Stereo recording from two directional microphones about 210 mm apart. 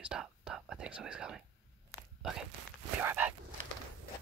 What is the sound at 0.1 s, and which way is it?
Whispering, 5° right (ahead or behind).